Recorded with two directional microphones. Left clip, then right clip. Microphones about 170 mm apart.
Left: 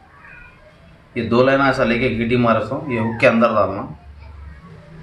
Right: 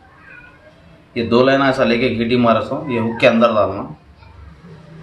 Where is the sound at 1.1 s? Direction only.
15° right (ahead or behind).